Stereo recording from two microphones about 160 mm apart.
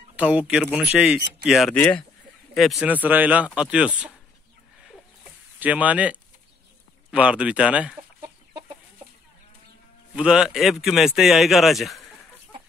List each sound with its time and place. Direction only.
0.1 s speech: 10° right (ahead or behind)
5.6 s speech: 10° right (ahead or behind)
8.2 s chicken: 25° right (ahead or behind)
10.1 s speech: 5° right (ahead or behind)